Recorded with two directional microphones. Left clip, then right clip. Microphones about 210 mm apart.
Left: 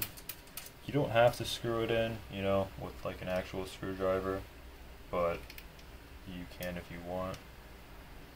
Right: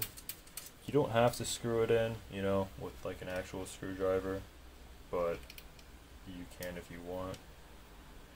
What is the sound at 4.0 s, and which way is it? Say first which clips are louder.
Speech: left 1 dB; 20° right (ahead or behind).